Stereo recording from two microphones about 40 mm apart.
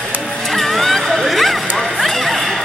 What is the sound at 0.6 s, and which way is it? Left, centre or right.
Music, centre.